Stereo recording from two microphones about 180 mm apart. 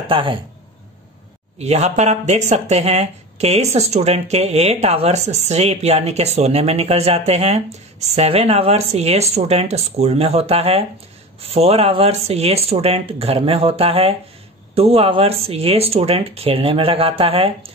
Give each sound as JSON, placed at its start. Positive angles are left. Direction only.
{"t": 0.1, "sound": "speech", "side_deg": -30}
{"t": 1.6, "sound": "speech", "side_deg": -40}